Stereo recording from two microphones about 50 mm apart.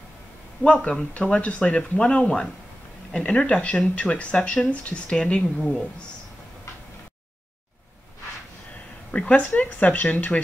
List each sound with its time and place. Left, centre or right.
0.7 s speech: centre
9.1 s speech: left